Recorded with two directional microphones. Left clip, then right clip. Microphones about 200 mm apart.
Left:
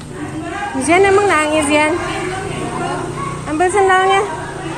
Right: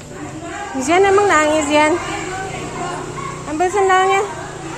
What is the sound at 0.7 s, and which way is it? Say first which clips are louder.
Speech: left 2 dB; 25° right (ahead or behind).